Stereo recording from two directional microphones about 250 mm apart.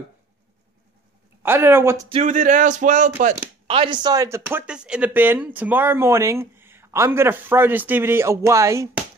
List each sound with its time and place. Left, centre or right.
1.4 s speech: centre
2.0 s speech: right